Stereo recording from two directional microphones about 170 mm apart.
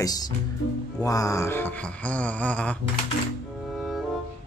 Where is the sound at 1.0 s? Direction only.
20° left (ahead or behind).